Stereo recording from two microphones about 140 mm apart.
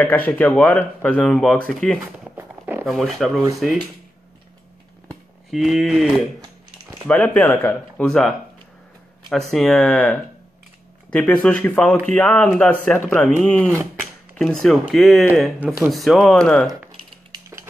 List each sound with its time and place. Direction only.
0.0 s speech: 10° left (ahead or behind)
2.3 s zipper: 15° right (ahead or behind)
2.8 s speech: centre (ahead or behind)
5.5 s speech: centre (ahead or behind)
7.1 s speech: 10° left (ahead or behind)
17.3 s a sound: 20° right (ahead or behind)